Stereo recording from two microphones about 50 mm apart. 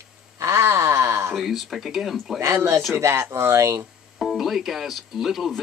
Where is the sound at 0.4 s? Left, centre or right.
Right.